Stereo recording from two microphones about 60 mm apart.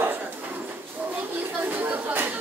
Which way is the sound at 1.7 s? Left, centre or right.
Right.